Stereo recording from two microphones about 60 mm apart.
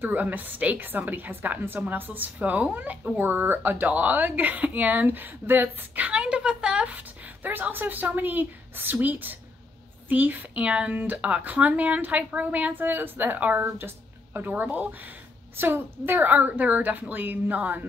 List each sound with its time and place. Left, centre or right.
0.0 s a woman's voice: right
7.4 s a woman's voice: right